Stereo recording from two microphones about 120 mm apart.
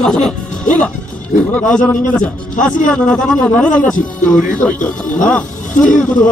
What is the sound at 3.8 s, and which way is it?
Speech, 90° left.